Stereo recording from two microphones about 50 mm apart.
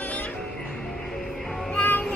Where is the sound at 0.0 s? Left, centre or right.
Left.